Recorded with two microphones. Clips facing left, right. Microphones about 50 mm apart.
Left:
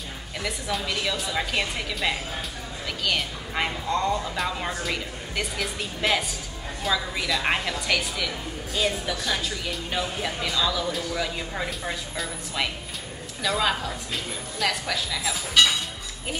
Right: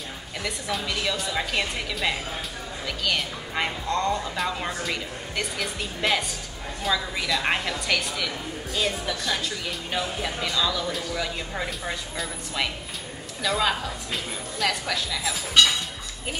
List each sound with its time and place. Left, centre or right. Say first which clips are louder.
0.4 s a woman's voice: left 1 dB; centre